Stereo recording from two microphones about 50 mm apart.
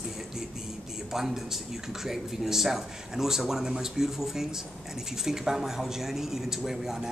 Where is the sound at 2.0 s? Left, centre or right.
Centre.